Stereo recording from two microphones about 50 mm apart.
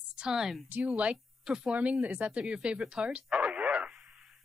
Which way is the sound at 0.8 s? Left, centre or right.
Right.